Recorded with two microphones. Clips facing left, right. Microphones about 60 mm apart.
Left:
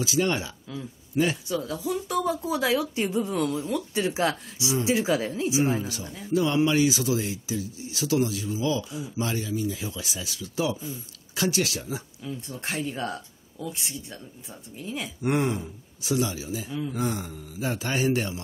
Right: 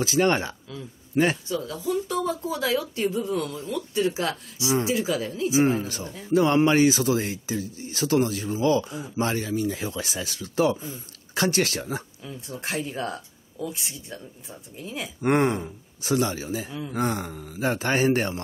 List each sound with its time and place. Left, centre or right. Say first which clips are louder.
0.0 s a man's voice: right 4 dB; right
1.5 s speech: right 1 dB; centre
5.5 s a man's voice: right 5 dB; right
12.2 s speech: left 1 dB; centre
15.2 s a man's voice: right 4 dB; right